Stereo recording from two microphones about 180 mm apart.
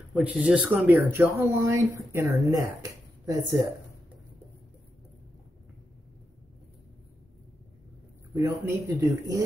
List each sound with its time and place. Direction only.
0.1 s speech: 5° right (ahead or behind)
8.4 s speech: 15° right (ahead or behind)